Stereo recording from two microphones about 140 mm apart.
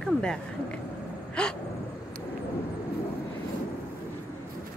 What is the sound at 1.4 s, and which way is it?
Speech, 5° left (ahead or behind).